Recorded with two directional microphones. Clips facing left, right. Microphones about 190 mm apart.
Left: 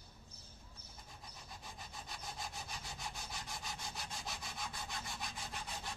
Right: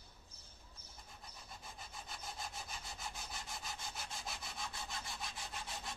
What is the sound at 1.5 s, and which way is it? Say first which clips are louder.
Wood: left 1 dB; centre (ahead or behind).